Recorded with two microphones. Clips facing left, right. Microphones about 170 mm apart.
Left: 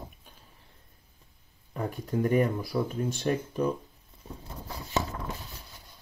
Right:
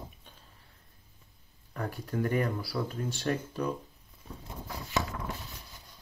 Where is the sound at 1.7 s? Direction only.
20° left (ahead or behind).